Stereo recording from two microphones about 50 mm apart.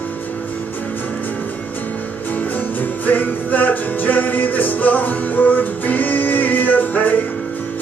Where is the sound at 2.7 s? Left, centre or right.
Left.